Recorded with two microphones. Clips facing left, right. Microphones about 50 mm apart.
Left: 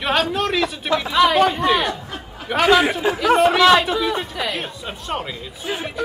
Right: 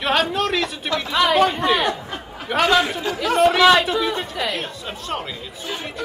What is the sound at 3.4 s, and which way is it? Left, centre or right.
Speech, centre.